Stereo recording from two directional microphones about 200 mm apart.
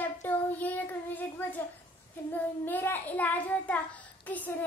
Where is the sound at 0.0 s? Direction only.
10° left (ahead or behind).